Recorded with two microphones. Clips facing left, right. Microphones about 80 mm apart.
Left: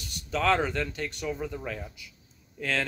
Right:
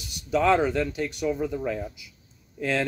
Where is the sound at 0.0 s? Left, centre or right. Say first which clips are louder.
Right 5 dB; centre.